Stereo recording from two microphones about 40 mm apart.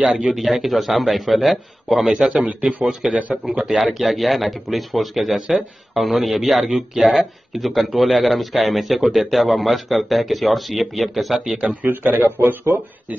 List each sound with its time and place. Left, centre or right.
0.3 s speech: centre
3.2 s speech: right
4.0 s speech: centre
11.8 s speech: right